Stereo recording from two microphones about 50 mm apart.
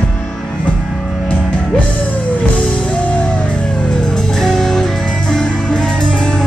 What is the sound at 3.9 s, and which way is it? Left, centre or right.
Music, centre.